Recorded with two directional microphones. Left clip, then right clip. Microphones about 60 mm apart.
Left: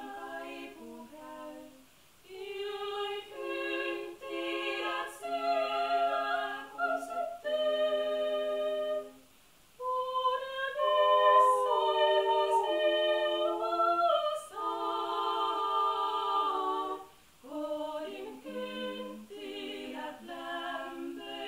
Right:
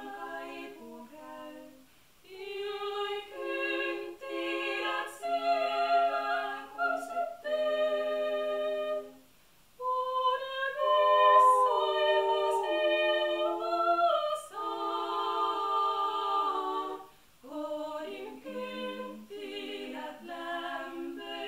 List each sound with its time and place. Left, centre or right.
0.0 s music: centre
2.4 s choir: centre
3.3 s music: centre
9.8 s female singing: centre
10.8 s singing: centre
11.1 s music: centre
17.5 s a capella: centre